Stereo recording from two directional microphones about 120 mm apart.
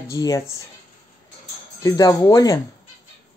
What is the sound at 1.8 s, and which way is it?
Speech, 30° left (ahead or behind).